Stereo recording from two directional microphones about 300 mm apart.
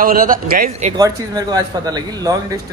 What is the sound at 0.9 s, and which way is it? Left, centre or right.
A man's voice, centre.